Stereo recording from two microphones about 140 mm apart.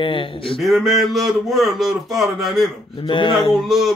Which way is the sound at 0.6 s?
Centre (ahead or behind).